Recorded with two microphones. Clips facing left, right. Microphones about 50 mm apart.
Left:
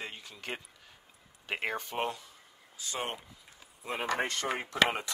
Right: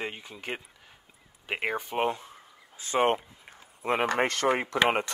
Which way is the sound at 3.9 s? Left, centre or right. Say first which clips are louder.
Right 6 dB; right.